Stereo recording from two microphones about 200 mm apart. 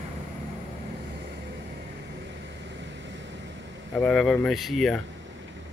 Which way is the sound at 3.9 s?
5° left (ahead or behind).